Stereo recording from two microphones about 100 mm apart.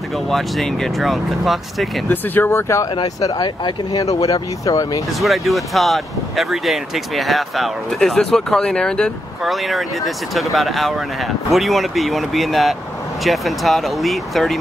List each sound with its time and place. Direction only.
0.3 s speech: centre (ahead or behind)
2.0 s speech: 20° left (ahead or behind)
3.0 s speech: 40° left (ahead or behind)
3.4 s speech: 50° left (ahead or behind)
4.0 s speech: 35° left (ahead or behind)
5.2 s speech: centre (ahead or behind)